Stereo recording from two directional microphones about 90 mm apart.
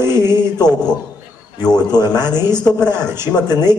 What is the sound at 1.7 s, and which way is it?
A man's voice, 45° left (ahead or behind).